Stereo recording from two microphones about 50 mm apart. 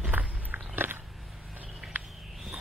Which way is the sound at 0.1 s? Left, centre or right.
Right.